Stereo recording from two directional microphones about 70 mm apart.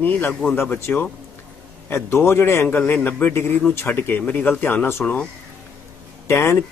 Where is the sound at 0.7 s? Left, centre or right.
Left.